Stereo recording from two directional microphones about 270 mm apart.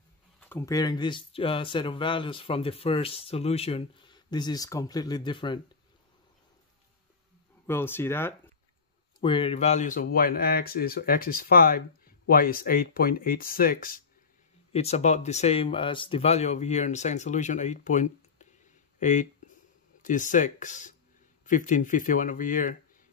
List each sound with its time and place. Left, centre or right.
0.4 s speech: centre
7.6 s speech: centre
9.2 s speech: centre